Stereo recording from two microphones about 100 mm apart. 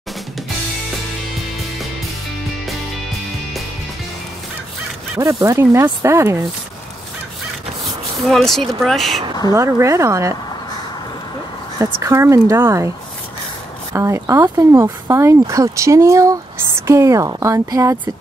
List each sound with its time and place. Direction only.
5.4 s speech: 30° right (ahead or behind)
8.2 s speech: 5° left (ahead or behind)
9.5 s speech: 30° right (ahead or behind)
11.8 s speech: 30° right (ahead or behind)
13.9 s speech: 30° right (ahead or behind)